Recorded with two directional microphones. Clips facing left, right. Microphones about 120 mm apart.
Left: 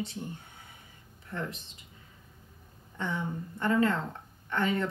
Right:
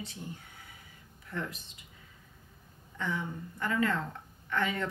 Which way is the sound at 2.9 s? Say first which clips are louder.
Left 2 dB; 25° left (ahead or behind).